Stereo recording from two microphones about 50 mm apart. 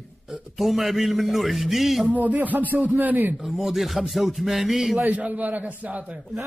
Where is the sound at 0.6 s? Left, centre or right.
Centre.